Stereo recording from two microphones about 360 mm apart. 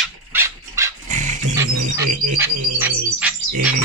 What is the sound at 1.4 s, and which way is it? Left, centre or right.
Music, right.